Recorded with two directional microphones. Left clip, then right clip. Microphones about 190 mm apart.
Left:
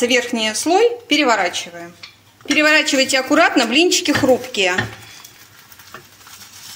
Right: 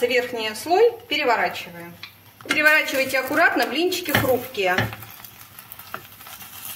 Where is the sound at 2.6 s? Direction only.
40° left (ahead or behind).